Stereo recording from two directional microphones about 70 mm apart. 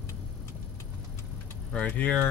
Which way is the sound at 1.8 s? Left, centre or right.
Left.